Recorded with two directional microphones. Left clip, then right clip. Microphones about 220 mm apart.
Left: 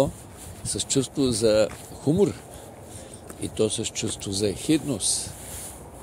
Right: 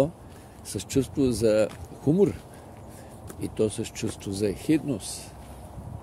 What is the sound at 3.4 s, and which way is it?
Speech, 15° right (ahead or behind).